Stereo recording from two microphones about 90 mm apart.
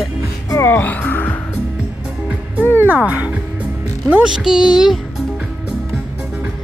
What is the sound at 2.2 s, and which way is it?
Music, 20° right (ahead or behind).